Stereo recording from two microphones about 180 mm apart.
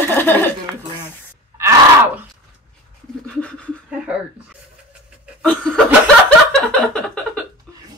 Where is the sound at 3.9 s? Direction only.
5° right (ahead or behind).